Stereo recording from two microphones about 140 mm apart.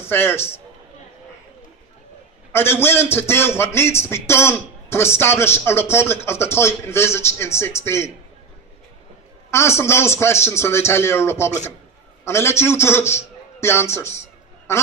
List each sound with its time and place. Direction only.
0.1 s a man's voice: 15° left (ahead or behind)
2.5 s a man's voice: 15° left (ahead or behind)
9.5 s a man's voice: 20° left (ahead or behind)